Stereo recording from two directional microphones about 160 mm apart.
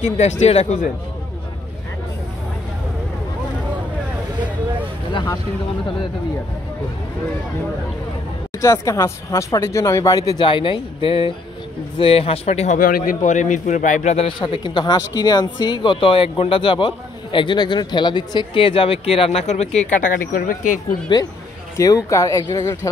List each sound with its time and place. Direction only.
0.0 s speech: 45° left (ahead or behind)
5.1 s speech: 20° left (ahead or behind)
8.5 s a man's voice: 20° left (ahead or behind); by 12.7 s 40° left (ahead or behind)
12.7 s a man's voice: 60° left (ahead or behind); by 19.9 s 45° left (ahead or behind)
20.2 s speech: 60° left (ahead or behind)
21.7 s speech: 20° left (ahead or behind)